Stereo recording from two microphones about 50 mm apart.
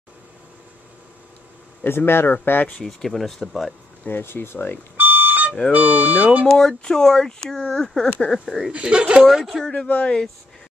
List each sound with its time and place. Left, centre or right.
1.9 s speech: left
2.3 s speech: left
2.8 s speech: centre
4.0 s speech: left
4.9 s alarm clock: right
5.7 s speech: right
6.4 s speech: centre
8.7 s speech: right
9.3 s speech: centre
9.8 s speech: left